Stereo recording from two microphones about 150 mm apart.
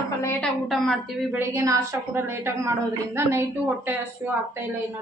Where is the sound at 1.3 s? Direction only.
15° right (ahead or behind).